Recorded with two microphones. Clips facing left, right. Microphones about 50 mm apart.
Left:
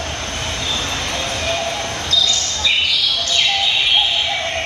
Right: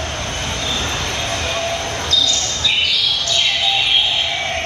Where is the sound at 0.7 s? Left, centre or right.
Right.